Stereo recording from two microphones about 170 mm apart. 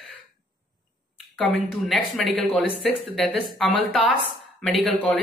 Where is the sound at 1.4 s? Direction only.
5° left (ahead or behind).